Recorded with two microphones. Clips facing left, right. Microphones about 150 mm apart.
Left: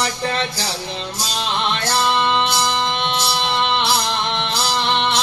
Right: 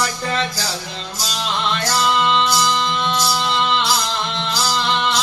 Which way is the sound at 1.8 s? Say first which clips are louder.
Right 1 dB; 60° left (ahead or behind).